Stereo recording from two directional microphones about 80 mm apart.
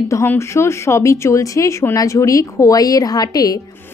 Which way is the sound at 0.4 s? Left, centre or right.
Left.